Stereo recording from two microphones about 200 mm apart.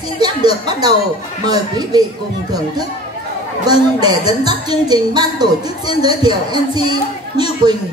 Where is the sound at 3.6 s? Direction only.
20° right (ahead or behind).